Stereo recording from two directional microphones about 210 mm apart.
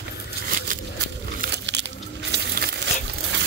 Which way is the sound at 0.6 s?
50° right (ahead or behind).